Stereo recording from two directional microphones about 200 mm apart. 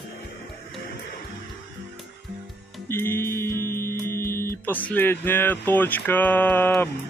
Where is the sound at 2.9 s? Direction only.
10° left (ahead or behind).